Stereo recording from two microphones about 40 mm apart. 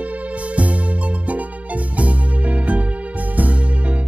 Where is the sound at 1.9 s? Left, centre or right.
Right.